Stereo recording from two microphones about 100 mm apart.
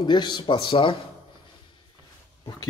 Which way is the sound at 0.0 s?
50° left (ahead or behind).